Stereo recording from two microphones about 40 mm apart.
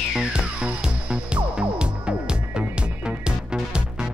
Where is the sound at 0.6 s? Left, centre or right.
Right.